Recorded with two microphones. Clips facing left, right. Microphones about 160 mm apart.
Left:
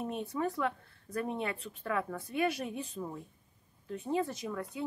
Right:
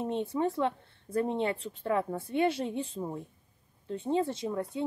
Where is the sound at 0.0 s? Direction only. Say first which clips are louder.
Right 4 dB; 25° right (ahead or behind).